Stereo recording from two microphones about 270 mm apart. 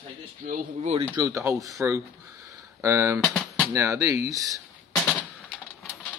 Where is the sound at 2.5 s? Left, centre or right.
Centre.